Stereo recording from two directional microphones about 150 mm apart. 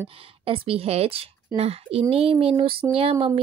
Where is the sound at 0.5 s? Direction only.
40° right (ahead or behind).